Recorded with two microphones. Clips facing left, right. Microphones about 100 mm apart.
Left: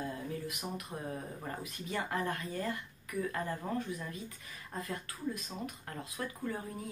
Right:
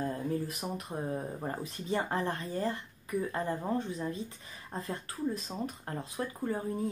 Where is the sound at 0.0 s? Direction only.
35° right (ahead or behind).